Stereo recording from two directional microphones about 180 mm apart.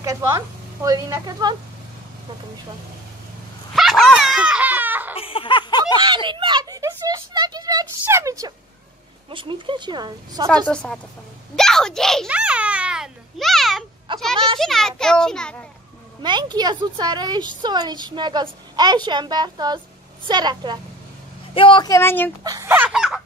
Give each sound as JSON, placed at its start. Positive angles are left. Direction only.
{"t": 0.0, "sound": "speech", "side_deg": -15}
{"t": 3.7, "sound": "a sound", "side_deg": 0}
{"t": 5.1, "sound": "a sound", "side_deg": 30}
{"t": 6.0, "sound": "speech", "side_deg": -25}
{"t": 10.7, "sound": "a child's voice", "side_deg": 5}
{"t": 14.1, "sound": "speech", "side_deg": -25}
{"t": 14.6, "sound": "a child's voice", "side_deg": 0}
{"t": 16.2, "sound": "speech", "side_deg": -25}
{"t": 21.5, "sound": "speech", "side_deg": 25}
{"t": 22.4, "sound": "a sound", "side_deg": -20}